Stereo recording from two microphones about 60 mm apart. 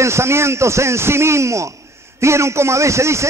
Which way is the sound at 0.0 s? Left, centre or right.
Right.